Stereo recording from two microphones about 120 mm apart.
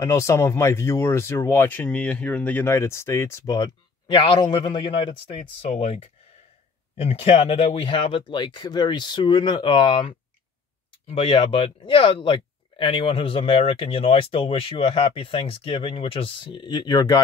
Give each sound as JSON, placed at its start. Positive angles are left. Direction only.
{"t": 0.0, "sound": "speech", "side_deg": 25}
{"t": 4.1, "sound": "speech", "side_deg": 45}
{"t": 5.3, "sound": "speech", "side_deg": 60}
{"t": 7.0, "sound": "speech", "side_deg": 55}